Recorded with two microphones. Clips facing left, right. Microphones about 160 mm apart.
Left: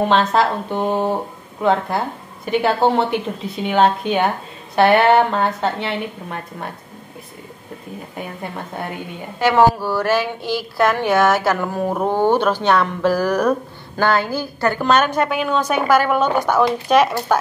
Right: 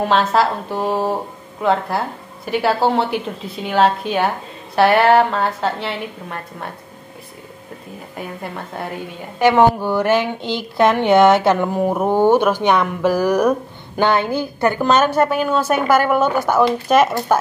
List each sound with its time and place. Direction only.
0.1 s speech: 5° right (ahead or behind)
8.2 s speech: centre (ahead or behind)
9.4 s speech: 20° right (ahead or behind)